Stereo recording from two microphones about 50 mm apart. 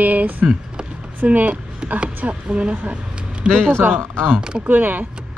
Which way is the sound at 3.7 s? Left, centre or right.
Right.